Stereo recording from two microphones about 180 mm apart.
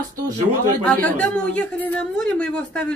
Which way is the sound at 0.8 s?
5° left (ahead or behind).